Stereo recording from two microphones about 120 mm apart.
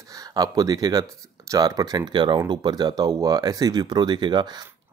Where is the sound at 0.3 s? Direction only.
30° right (ahead or behind).